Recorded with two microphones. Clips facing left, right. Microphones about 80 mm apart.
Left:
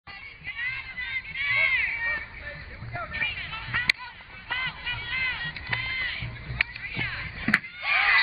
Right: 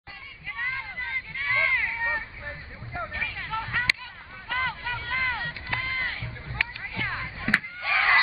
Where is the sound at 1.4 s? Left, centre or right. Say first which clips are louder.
Right 1 dB; right.